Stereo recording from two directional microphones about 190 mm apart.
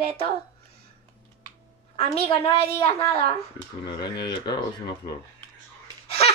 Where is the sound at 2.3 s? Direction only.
30° left (ahead or behind).